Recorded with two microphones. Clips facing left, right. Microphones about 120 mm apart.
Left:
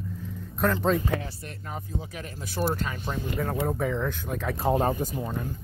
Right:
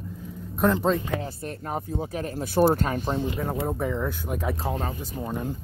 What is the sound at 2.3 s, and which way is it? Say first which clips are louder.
Speech: right 8 dB; 55° right (ahead or behind).